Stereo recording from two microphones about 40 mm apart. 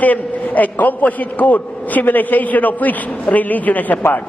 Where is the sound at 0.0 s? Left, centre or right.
Left.